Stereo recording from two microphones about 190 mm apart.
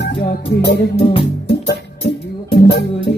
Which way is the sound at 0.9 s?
30° left (ahead or behind).